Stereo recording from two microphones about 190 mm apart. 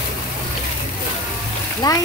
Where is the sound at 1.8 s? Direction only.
20° left (ahead or behind).